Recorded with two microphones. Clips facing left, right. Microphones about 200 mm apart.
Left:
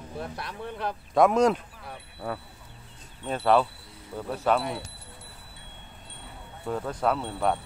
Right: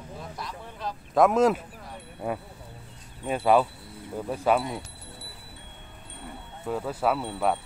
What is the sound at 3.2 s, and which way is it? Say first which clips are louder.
Speech: right 1 dB; 10° right (ahead or behind).